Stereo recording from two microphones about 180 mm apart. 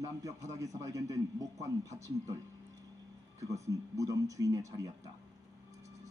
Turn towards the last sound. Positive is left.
turn(degrees=-20)  # may be behind; listen again after turning